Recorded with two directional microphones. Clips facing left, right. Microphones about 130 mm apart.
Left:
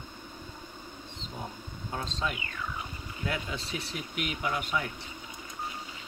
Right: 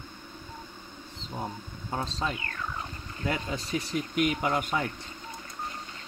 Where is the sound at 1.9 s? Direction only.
35° right (ahead or behind).